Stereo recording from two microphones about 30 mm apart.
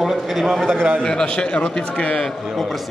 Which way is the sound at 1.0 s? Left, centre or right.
Left.